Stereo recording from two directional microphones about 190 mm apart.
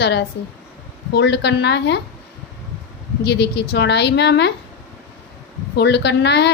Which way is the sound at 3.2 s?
60° left (ahead or behind).